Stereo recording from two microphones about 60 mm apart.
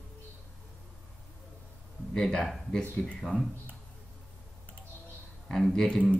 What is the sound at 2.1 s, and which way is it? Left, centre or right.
Speech, centre.